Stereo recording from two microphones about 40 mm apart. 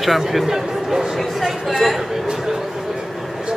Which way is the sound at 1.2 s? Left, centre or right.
Centre.